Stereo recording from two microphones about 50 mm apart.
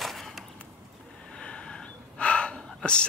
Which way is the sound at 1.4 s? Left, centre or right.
Centre.